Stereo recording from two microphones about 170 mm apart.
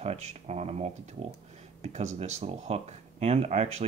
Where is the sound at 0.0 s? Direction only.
40° right (ahead or behind).